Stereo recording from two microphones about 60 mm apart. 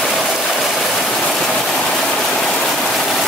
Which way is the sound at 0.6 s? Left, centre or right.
Centre.